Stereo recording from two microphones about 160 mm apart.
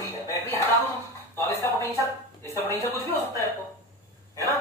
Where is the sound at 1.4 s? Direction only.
15° left (ahead or behind).